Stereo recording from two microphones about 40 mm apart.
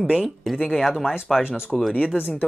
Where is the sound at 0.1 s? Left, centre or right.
Centre.